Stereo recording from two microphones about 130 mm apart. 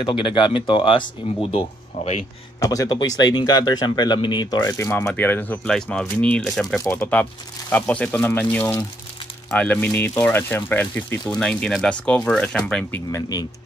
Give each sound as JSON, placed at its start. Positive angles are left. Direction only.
{"t": 0.0, "sound": "speech", "side_deg": 40}
{"t": 2.6, "sound": "speech", "side_deg": 25}
{"t": 4.7, "sound": "speech", "side_deg": 10}
{"t": 6.8, "sound": "speech", "side_deg": 25}
{"t": 7.7, "sound": "speech", "side_deg": 10}
{"t": 13.1, "sound": "speech", "side_deg": 30}